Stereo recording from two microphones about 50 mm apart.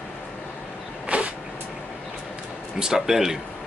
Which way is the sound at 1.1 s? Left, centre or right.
Right.